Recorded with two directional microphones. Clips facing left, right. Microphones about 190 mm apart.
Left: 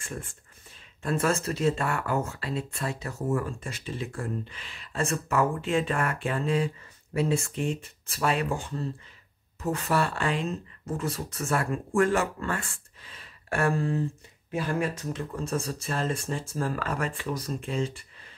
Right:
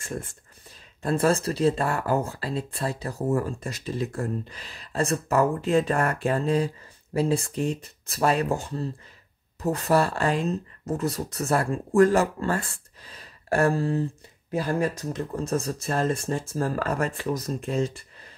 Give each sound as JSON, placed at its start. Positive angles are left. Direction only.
{"t": 0.0, "sound": "speech", "side_deg": -40}